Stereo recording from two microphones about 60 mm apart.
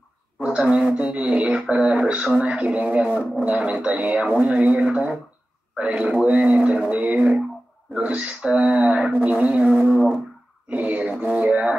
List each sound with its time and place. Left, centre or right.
0.4 s speech: centre
10.7 s a sound: right
11.3 s speech: right